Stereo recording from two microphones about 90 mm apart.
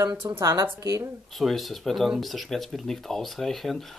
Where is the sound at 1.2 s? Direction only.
Centre (ahead or behind).